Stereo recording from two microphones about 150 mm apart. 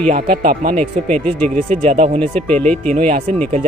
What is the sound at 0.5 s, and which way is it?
Speech, 50° right (ahead or behind).